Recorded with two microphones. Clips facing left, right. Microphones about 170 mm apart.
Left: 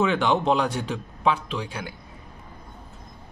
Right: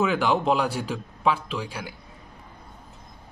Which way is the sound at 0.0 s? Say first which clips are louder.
Left 1 dB; centre (ahead or behind).